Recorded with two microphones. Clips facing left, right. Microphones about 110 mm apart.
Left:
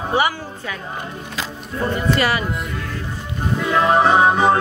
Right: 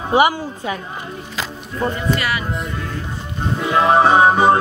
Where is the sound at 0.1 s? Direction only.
15° right (ahead or behind).